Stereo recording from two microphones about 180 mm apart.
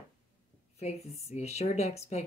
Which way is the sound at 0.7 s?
35° left (ahead or behind).